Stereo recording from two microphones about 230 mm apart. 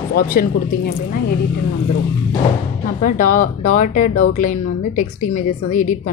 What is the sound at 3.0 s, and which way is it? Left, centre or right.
A woman's voice, left.